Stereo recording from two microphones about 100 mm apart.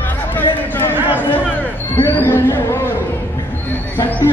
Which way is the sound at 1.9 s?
20° left (ahead or behind).